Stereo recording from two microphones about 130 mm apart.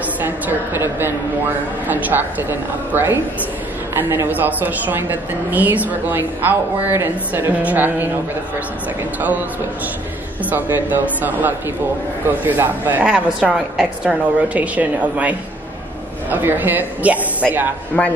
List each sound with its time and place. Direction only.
0.2 s a woman's voice: 15° right (ahead or behind)
10.5 s a woman's voice: 15° right (ahead or behind)
17.9 s a man's voice: 10° left (ahead or behind)